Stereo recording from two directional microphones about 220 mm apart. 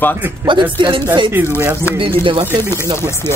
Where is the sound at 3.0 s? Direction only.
10° left (ahead or behind).